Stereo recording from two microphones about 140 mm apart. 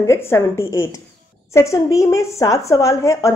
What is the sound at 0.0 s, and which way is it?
A woman's voice, 20° left (ahead or behind).